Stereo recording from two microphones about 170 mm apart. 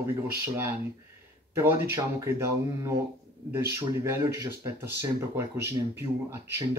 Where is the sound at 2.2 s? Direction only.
15° right (ahead or behind).